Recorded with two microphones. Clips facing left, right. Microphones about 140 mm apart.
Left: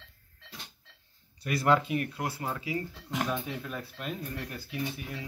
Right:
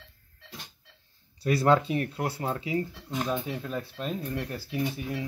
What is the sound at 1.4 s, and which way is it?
Speech, 30° right (ahead or behind).